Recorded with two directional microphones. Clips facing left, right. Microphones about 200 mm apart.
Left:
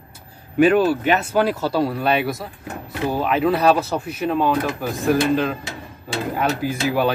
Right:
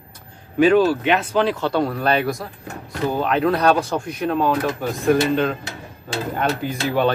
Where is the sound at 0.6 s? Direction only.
5° left (ahead or behind).